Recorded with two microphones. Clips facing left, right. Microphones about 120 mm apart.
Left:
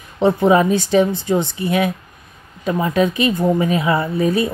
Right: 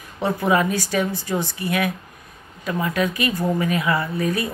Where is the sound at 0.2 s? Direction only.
25° left (ahead or behind).